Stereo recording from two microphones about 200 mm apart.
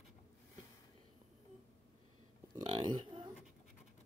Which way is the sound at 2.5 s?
20° right (ahead or behind).